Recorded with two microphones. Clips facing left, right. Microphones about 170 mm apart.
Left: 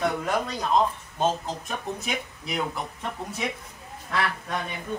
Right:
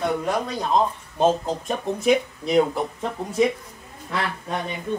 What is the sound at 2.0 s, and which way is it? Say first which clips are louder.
Speech: right 12 dB; 30° right (ahead or behind).